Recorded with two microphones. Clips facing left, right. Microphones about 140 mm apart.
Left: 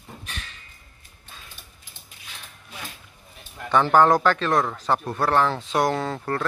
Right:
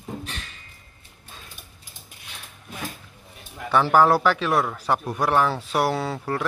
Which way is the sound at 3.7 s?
5° right (ahead or behind).